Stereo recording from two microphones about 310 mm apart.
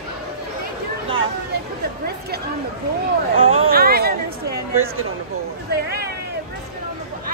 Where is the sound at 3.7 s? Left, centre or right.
Right.